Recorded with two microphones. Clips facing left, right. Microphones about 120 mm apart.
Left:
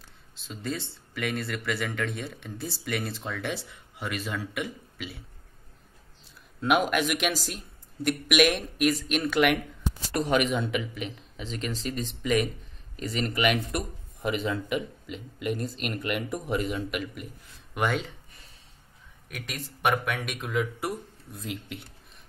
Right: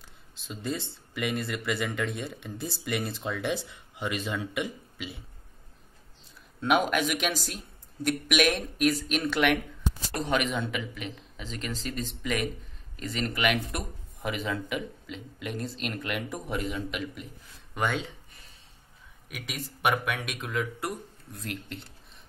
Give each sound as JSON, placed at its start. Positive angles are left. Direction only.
{"t": 0.5, "sound": "speech", "side_deg": 0}
{"t": 6.6, "sound": "speech", "side_deg": 0}
{"t": 19.2, "sound": "speech", "side_deg": -5}